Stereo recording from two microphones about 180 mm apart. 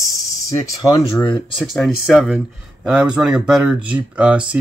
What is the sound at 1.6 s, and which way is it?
Speech, centre (ahead or behind).